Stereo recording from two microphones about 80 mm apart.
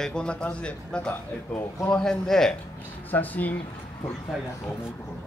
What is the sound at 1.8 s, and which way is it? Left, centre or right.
Speech, centre.